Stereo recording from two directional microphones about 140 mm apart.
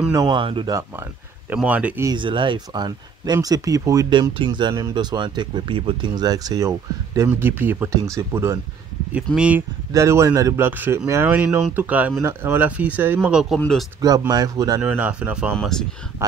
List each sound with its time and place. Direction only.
0.1 s speech: 30° right (ahead or behind)
0.7 s speech: 20° right (ahead or behind)
1.5 s speech: 10° right (ahead or behind)
2.0 s speech: 35° right (ahead or behind)
7.2 s speech: 15° right (ahead or behind)
9.1 s speech: 10° right (ahead or behind)
9.9 s speech: 20° right (ahead or behind); by 13.8 s 5° left (ahead or behind)
14.0 s speech: 25° right (ahead or behind)
14.8 s speech: 10° right (ahead or behind)
15.5 s speech: 5° left (ahead or behind)
16.2 s speech: 20° right (ahead or behind)